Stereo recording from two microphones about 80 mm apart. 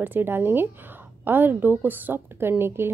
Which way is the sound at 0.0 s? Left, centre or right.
Right.